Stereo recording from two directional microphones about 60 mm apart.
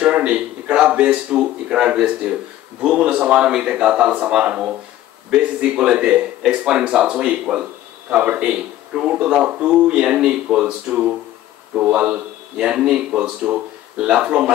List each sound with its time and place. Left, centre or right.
0.0 s speech: centre